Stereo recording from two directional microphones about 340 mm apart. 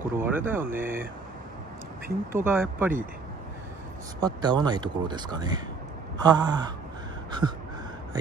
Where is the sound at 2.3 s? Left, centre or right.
Centre.